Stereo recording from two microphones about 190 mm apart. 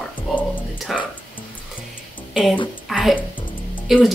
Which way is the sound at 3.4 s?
25° left (ahead or behind).